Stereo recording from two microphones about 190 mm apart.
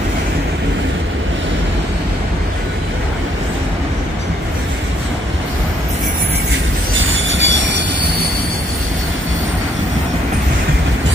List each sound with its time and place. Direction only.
7.2 s train: 80° right